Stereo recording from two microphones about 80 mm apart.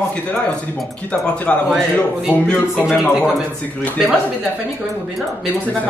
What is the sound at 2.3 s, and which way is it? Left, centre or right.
Music, left.